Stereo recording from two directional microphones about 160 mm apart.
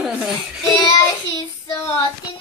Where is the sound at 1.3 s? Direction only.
20° left (ahead or behind).